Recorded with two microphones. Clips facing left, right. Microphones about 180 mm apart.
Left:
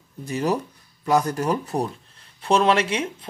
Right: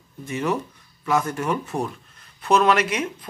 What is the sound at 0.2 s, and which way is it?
Speech, 35° left (ahead or behind).